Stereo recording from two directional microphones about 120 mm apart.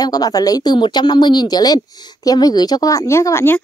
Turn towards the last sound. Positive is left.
turn(degrees=20)  # may be behind; listen again after turning